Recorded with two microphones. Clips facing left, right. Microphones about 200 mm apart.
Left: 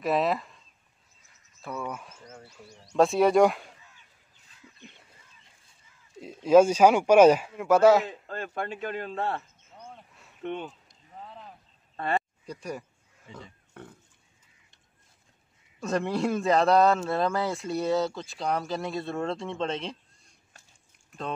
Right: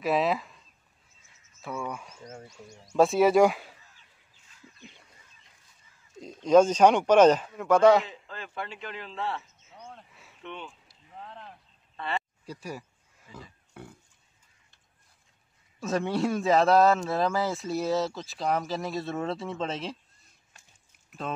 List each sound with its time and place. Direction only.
0.0 s speech: centre (ahead or behind)
1.6 s speech: centre (ahead or behind)
2.8 s speech: 5° right (ahead or behind)
6.2 s speech: 5° left (ahead or behind)
8.1 s a man's voice: 50° left (ahead or behind)
9.8 s a sound: 5° left (ahead or behind)
10.4 s a man's voice: 50° left (ahead or behind)
10.9 s a sound: 5° left (ahead or behind)
12.0 s a sound: 45° left (ahead or behind)
12.4 s speech: 5° right (ahead or behind)
13.3 s pig: 10° right (ahead or behind)
15.8 s speech: centre (ahead or behind)